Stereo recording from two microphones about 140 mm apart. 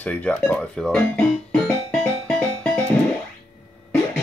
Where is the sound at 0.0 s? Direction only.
10° left (ahead or behind).